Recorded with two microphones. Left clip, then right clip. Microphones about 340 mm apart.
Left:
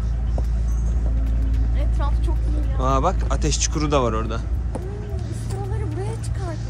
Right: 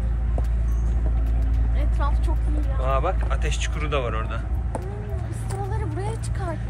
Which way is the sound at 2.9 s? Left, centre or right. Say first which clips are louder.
Left 4 dB; centre.